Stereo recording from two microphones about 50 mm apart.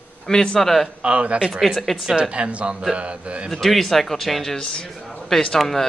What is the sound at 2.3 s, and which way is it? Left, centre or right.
Speech, right.